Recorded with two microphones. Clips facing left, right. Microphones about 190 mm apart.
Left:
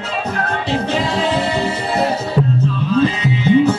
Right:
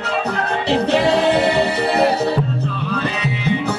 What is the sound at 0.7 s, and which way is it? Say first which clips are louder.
A capella: right 5 dB; 65° right (ahead or behind).